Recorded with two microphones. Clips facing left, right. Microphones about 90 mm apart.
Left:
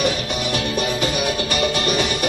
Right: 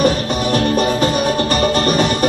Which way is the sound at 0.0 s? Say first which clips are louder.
Right 6 dB; 40° right (ahead or behind).